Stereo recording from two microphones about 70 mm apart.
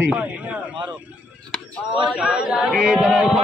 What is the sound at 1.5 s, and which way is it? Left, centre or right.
Speech, centre.